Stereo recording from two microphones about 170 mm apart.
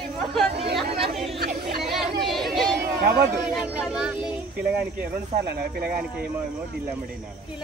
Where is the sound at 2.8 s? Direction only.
60° right (ahead or behind).